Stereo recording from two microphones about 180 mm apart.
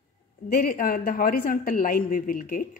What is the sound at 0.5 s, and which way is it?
A woman's voice, 55° left (ahead or behind).